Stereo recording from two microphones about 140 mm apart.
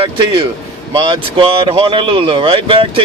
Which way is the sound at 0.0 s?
35° right (ahead or behind).